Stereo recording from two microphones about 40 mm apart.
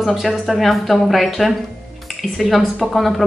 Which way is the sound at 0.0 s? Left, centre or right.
Centre.